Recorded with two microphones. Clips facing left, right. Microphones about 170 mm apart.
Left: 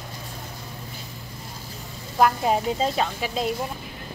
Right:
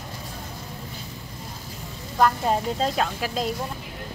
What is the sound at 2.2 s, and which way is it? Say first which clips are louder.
Speech: left 1 dB; 10° left (ahead or behind).